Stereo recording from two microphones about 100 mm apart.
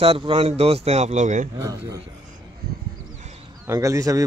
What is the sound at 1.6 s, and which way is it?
Speech, 30° right (ahead or behind).